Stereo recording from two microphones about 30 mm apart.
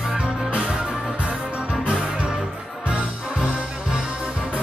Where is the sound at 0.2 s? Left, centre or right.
Right.